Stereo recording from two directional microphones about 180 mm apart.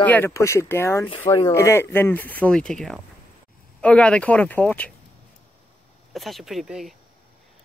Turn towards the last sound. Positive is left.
turn(degrees=0)  # may be behind; listen again after turning